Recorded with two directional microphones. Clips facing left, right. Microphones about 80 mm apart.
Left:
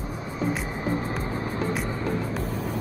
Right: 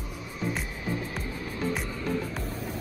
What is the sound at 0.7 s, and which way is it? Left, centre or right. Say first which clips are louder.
Music: left 6 dB; left.